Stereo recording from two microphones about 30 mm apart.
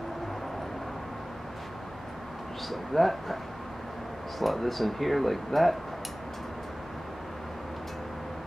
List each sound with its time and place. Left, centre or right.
2.7 s speech: centre
4.4 s speech: centre